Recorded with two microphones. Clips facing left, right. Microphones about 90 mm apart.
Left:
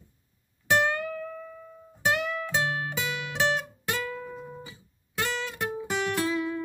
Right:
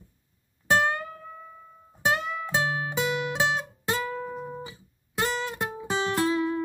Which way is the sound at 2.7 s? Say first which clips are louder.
Right 4 dB; 20° right (ahead or behind).